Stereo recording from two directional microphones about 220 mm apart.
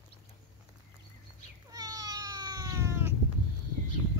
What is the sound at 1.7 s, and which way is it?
Cat, 15° right (ahead or behind).